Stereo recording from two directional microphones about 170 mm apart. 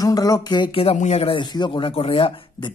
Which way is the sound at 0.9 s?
40° left (ahead or behind).